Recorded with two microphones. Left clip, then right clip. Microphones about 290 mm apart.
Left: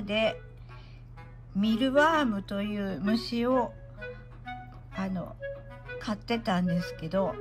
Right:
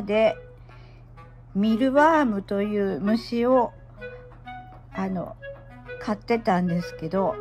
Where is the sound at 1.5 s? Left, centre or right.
Centre.